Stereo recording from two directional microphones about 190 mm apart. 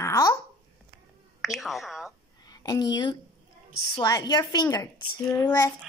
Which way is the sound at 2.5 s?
20° left (ahead or behind).